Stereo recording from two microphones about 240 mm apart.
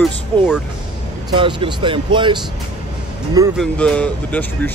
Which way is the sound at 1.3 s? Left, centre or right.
Centre.